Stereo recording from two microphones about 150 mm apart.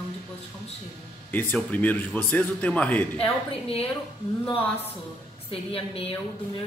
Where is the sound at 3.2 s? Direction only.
40° left (ahead or behind).